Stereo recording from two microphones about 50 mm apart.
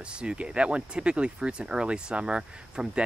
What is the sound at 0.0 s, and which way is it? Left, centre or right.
Speech, centre.